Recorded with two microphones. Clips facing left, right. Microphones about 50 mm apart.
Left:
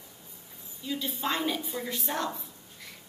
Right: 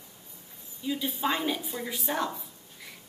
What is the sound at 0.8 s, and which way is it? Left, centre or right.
A woman's voice, centre.